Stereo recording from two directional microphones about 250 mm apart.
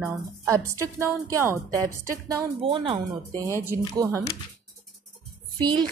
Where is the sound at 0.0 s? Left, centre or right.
Centre.